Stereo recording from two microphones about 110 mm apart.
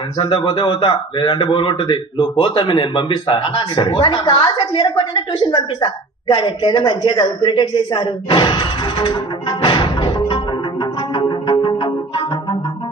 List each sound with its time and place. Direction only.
0.2 s a man's voice: 50° left (ahead or behind)
11.5 s music: 35° left (ahead or behind)